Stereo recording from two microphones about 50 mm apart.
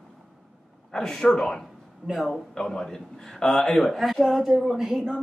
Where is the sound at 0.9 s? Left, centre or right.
Centre.